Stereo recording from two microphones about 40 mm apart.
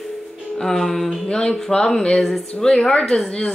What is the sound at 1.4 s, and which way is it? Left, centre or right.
Speech, centre.